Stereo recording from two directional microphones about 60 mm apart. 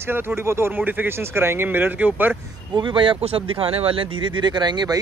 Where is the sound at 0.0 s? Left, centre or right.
Right.